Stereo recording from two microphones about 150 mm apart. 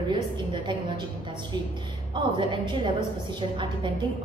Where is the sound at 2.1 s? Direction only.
30° right (ahead or behind).